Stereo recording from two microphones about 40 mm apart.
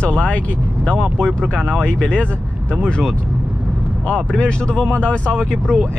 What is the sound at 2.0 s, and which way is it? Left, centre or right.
Speech, left.